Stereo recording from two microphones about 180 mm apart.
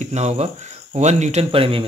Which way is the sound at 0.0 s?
40° right (ahead or behind).